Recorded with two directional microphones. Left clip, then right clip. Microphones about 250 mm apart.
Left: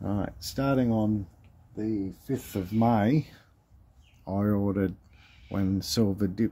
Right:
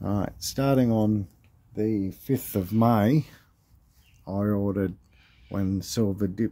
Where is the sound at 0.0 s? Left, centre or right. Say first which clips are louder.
Right 3 dB; centre.